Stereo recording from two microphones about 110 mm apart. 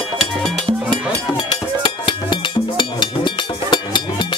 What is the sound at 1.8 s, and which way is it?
Music, 45° left (ahead or behind).